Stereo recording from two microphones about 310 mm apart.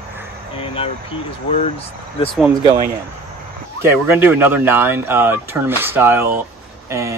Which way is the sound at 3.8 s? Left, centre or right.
Centre.